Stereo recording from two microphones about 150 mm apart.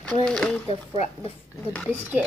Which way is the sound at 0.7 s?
40° left (ahead or behind).